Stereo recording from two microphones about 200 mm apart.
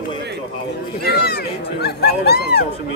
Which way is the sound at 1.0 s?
50° left (ahead or behind).